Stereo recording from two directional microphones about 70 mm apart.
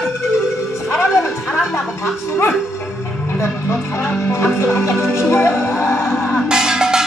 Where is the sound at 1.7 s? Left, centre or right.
Left.